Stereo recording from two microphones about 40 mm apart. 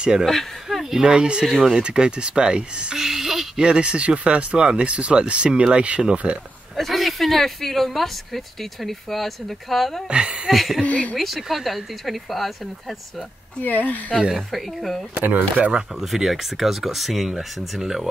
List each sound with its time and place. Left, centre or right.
0.2 s speech: centre
0.8 s speech: centre; by 3.0 s right
3.0 s a sound: centre
3.5 s speech: right
6.8 s speech: centre
10.0 s a woman's voice: right
10.5 s speech: centre
10.8 s speech: left
11.1 s speech: centre
13.6 s speech: left
14.3 s speech: centre
15.5 s speech: right
16.0 s speech: centre